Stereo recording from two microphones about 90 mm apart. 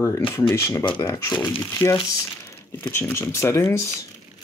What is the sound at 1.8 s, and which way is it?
Speech, 60° left (ahead or behind).